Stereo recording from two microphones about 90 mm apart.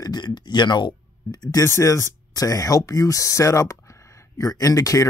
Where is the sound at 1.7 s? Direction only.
35° left (ahead or behind).